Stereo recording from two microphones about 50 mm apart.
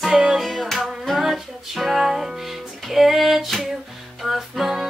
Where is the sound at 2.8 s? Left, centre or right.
Centre.